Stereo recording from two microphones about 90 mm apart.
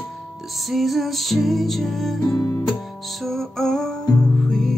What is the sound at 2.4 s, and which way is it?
Music, 30° left (ahead or behind).